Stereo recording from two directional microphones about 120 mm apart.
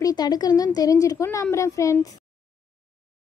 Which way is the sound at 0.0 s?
35° left (ahead or behind).